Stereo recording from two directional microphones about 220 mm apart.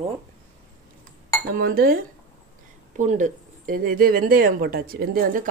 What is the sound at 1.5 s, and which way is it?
Speech, 40° right (ahead or behind).